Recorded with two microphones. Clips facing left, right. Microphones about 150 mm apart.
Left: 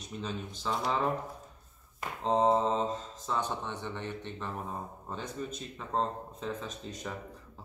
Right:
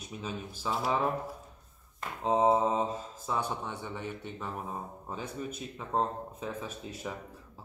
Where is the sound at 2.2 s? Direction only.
5° right (ahead or behind).